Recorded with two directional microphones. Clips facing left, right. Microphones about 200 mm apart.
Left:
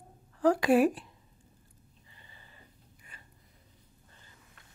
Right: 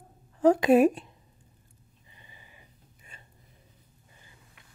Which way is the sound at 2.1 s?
15° right (ahead or behind).